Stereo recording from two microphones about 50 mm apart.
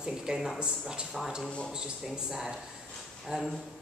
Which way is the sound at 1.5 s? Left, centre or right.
Left.